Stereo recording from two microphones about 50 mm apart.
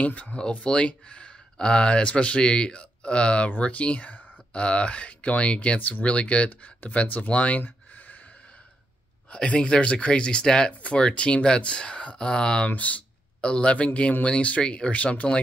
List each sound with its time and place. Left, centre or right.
0.0 s speech: left
9.3 s speech: left
10.7 s speech: left